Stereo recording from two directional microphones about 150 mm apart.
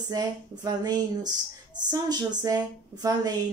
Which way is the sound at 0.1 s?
25° right (ahead or behind).